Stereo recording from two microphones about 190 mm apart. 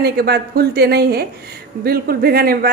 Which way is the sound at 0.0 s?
55° right (ahead or behind).